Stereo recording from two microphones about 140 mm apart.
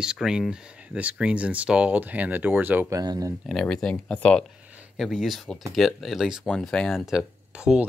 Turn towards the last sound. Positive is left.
turn(degrees=-5)  # may be behind; listen again after turning